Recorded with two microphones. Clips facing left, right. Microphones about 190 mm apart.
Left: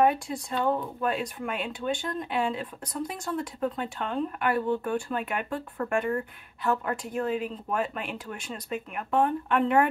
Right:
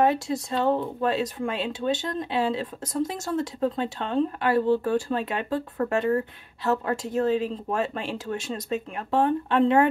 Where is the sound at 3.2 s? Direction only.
40° right (ahead or behind).